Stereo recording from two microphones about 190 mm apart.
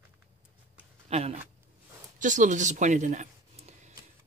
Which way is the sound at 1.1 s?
35° right (ahead or behind).